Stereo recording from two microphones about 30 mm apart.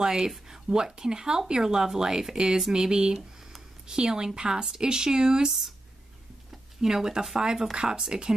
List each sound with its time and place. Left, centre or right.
0.0 s speech: right
6.8 s speech: centre